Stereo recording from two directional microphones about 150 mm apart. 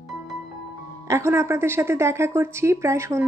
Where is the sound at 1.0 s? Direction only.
20° right (ahead or behind).